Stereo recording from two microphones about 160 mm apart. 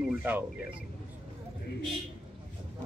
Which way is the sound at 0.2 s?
10° right (ahead or behind).